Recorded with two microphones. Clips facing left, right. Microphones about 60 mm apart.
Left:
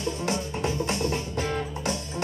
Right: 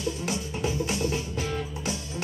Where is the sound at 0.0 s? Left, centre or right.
Left.